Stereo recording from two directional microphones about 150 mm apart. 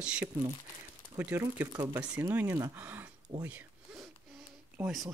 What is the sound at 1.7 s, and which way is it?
Speech, 20° right (ahead or behind).